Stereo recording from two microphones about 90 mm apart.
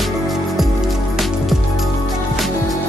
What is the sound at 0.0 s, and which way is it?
Music, centre (ahead or behind).